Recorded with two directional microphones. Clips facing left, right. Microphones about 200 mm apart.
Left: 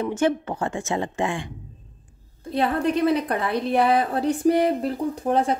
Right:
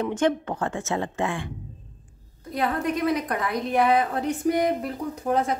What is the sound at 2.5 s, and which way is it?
A woman's voice, 30° left (ahead or behind).